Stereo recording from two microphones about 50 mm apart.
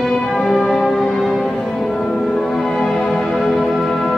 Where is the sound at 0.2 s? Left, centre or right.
Centre.